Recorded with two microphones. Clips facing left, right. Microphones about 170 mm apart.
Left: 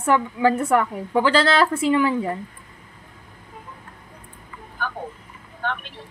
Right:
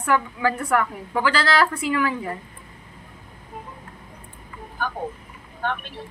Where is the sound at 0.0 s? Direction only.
25° left (ahead or behind).